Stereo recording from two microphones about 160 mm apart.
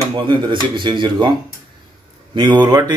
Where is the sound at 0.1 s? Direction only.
30° right (ahead or behind).